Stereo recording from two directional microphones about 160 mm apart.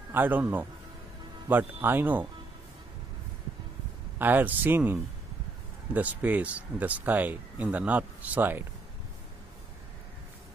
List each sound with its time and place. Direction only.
0.1 s speech: 10° right (ahead or behind)
4.2 s speech: 10° right (ahead or behind)